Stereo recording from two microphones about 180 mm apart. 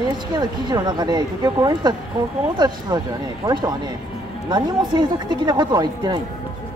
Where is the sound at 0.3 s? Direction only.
25° right (ahead or behind).